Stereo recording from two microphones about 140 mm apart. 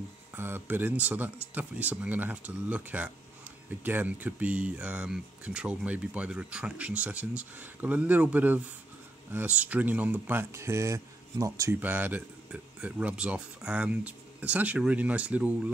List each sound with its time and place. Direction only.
0.4 s speech: 15° right (ahead or behind)